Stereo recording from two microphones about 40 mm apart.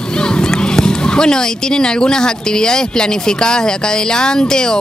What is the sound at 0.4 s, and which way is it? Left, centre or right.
Speech, centre.